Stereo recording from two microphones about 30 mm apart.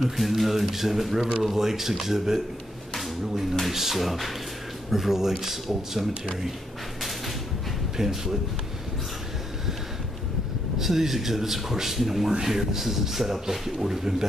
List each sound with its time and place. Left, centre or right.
0.0 s speech: centre
3.7 s speech: centre
8.0 s speech: centre
10.8 s speech: centre